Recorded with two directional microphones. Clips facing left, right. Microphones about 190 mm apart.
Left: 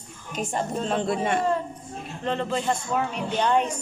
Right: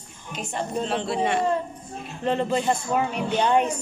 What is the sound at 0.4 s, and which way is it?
Speech, 45° left (ahead or behind).